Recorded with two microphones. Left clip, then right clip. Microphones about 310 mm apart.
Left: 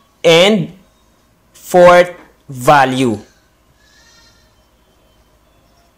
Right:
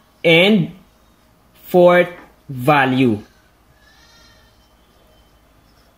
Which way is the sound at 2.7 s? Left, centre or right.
Left.